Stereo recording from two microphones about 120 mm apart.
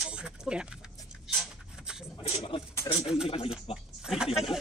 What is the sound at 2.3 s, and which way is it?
Speech, 50° left (ahead or behind).